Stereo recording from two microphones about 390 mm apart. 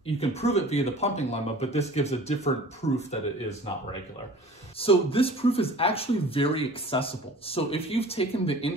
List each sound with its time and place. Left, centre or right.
0.0 s speech: centre
4.7 s speech: centre